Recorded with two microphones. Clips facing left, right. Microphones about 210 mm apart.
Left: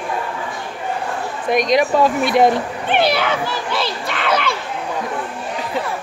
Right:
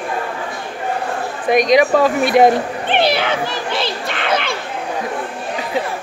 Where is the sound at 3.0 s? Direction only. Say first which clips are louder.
Right 1 dB; 25° right (ahead or behind).